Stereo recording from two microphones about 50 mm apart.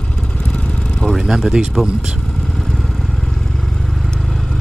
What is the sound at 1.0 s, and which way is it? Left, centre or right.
Speech, centre.